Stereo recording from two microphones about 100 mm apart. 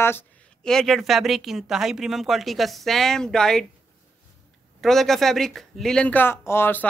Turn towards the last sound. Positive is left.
turn(degrees=20)  # may be behind; listen again after turning